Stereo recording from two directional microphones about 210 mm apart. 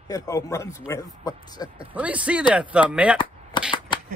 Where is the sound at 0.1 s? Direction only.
15° left (ahead or behind).